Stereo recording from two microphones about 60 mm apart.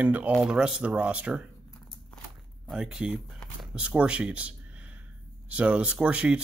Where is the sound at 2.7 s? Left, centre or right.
Centre.